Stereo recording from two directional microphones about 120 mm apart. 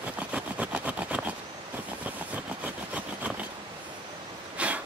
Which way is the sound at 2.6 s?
10° right (ahead or behind).